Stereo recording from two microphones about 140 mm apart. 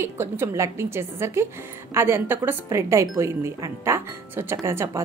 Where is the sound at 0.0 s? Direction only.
20° right (ahead or behind).